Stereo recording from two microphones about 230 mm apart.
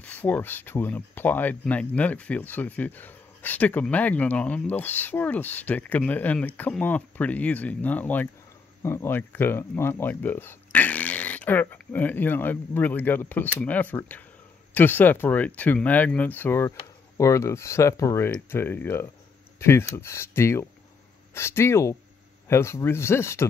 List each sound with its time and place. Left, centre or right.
0.0 s speech: centre